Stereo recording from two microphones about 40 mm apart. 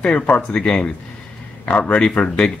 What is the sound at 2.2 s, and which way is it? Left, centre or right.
Speech, left.